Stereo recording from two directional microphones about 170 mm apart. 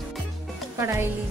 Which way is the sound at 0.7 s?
15° right (ahead or behind).